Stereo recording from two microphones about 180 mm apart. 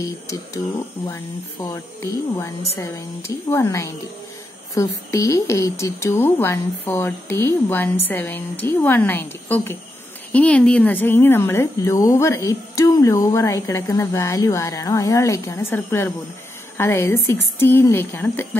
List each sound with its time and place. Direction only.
1.0 s speech: 20° left (ahead or behind)